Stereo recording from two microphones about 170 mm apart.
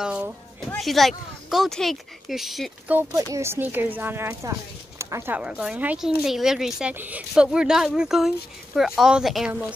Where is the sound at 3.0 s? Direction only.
15° right (ahead or behind).